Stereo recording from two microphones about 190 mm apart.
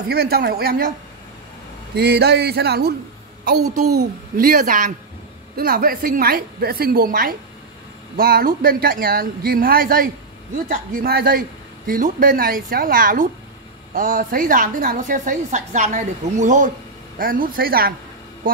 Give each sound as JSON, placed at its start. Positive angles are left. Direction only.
{"t": 0.1, "sound": "a man's voice", "side_deg": -55}
{"t": 2.0, "sound": "a man's voice", "side_deg": -60}